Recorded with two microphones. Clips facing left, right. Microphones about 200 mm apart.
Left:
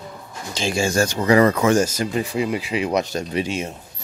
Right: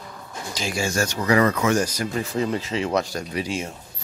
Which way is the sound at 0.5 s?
30° left (ahead or behind).